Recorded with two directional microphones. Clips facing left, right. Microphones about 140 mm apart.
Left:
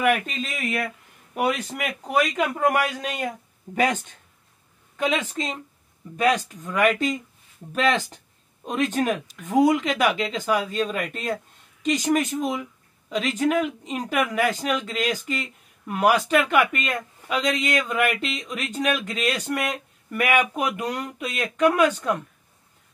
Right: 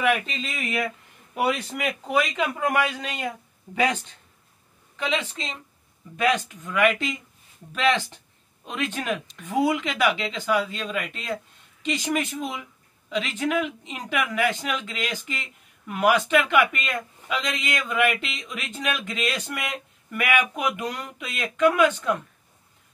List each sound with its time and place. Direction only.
0.0 s a man's voice: 45° left (ahead or behind)